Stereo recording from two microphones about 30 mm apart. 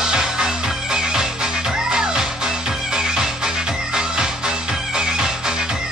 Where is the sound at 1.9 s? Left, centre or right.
Right.